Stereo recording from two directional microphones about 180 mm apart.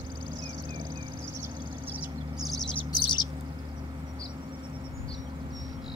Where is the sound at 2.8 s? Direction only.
25° left (ahead or behind).